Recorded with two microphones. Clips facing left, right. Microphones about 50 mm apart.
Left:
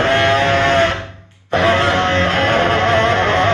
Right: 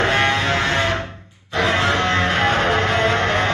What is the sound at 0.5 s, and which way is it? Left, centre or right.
Music, left.